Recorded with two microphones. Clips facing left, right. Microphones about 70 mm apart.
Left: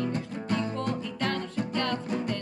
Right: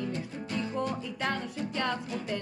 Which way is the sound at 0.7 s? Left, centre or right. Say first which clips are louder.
Left 1 dB; centre.